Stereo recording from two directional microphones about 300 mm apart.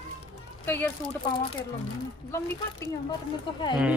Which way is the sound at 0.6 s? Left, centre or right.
Centre.